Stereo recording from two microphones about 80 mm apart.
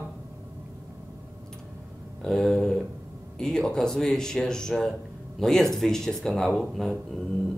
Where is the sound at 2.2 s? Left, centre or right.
Centre.